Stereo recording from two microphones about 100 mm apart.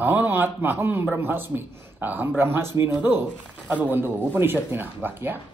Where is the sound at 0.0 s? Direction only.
20° right (ahead or behind).